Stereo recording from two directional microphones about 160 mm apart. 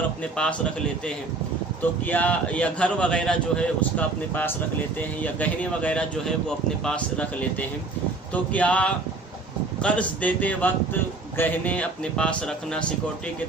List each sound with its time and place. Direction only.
1.8 s a man's voice: 10° left (ahead or behind)
8.5 s a man's voice: 10° left (ahead or behind)